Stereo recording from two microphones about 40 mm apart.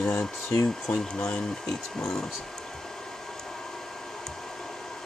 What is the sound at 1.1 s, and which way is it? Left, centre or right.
Speech, left.